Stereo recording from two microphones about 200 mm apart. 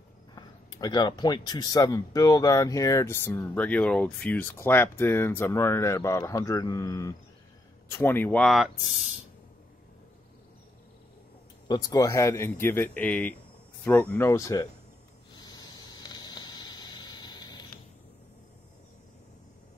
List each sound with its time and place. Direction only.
0.3 s speech: 20° left (ahead or behind); by 9.2 s centre (ahead or behind)
11.6 s speech: 20° left (ahead or behind)
15.3 s a sound: 20° left (ahead or behind)